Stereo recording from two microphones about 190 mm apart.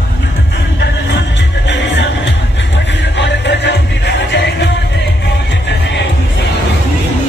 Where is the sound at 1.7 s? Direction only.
70° left (ahead or behind).